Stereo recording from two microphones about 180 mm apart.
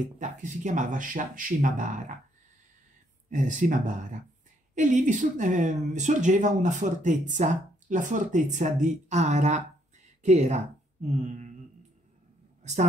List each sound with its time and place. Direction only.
0.0 s speech: 45° right (ahead or behind)
3.3 s speech: 45° right (ahead or behind)